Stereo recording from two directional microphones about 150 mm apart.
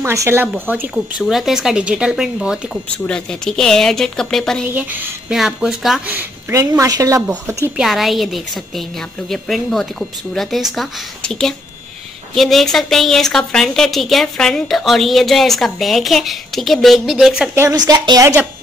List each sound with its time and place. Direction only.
0.0 s speech: 20° right (ahead or behind)
1.2 s a woman's voice: centre (ahead or behind)
4.6 s a woman's voice: 15° right (ahead or behind)
6.1 s speech: 15° right (ahead or behind)
7.8 s a woman's voice: centre (ahead or behind)
17.6 s speech: 25° right (ahead or behind)